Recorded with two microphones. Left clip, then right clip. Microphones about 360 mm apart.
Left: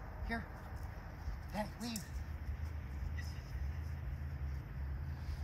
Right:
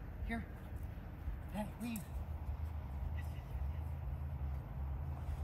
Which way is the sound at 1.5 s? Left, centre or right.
Centre.